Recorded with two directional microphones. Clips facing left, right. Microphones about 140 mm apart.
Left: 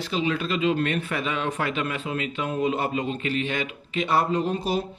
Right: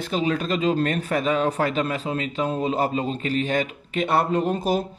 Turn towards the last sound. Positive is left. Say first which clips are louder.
# right 3 dB
turn(degrees=-45)  # may be behind; listen again after turning